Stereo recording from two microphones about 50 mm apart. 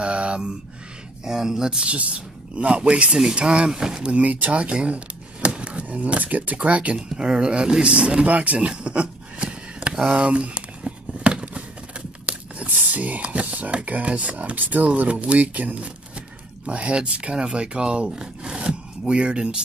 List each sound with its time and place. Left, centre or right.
0.0 s speech: right
1.2 s speech: centre
1.9 s speech: right
7.0 s speech: centre
10.1 s a sound: right
12.6 s speech: right